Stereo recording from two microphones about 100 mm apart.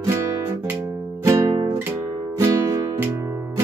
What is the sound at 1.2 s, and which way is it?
Music, 25° right (ahead or behind).